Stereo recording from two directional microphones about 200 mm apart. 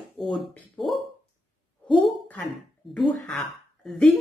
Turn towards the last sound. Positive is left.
turn(degrees=5)  # may be behind; listen again after turning